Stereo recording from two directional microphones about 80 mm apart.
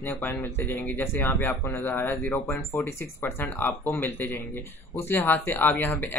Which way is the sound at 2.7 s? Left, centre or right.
Left.